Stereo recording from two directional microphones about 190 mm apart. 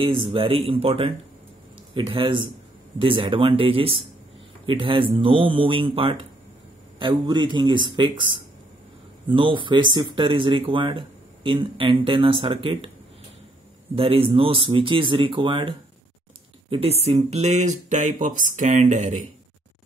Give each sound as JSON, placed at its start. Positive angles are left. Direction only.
{"t": 0.0, "sound": "speech", "side_deg": -25}
{"t": 13.9, "sound": "speech", "side_deg": -30}
{"t": 16.7, "sound": "speech", "side_deg": -30}